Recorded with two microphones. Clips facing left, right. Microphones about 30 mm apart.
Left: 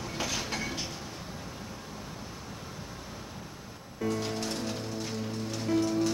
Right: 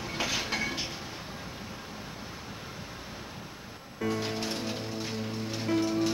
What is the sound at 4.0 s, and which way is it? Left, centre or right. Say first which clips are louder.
Music: even; centre.